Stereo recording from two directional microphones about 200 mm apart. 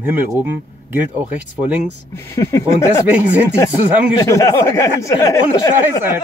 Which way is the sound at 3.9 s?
10° right (ahead or behind).